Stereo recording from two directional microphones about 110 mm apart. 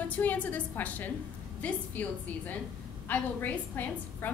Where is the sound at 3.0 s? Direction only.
15° left (ahead or behind).